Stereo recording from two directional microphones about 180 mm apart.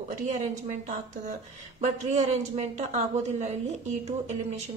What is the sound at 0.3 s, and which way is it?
Speech, 45° right (ahead or behind).